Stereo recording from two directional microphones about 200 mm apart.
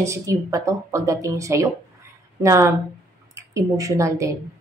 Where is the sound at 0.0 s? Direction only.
15° right (ahead or behind).